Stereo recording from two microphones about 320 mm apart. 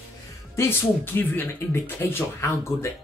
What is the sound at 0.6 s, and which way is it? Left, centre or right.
Speech, centre.